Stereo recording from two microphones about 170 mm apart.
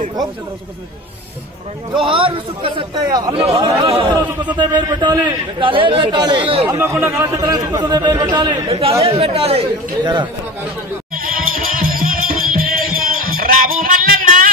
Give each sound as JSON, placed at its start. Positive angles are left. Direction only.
{"t": 2.0, "sound": "a man's voice", "side_deg": -30}
{"t": 3.4, "sound": "a man's voice", "side_deg": -35}
{"t": 6.6, "sound": "a man's voice", "side_deg": -15}
{"t": 11.1, "sound": "music", "side_deg": -55}